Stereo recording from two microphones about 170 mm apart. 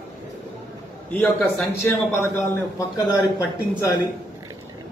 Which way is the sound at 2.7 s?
20° left (ahead or behind).